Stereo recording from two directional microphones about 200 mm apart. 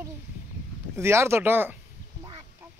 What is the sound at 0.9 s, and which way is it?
Speech, 15° right (ahead or behind).